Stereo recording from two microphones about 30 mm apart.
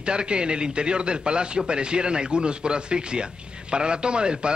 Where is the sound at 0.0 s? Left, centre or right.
Right.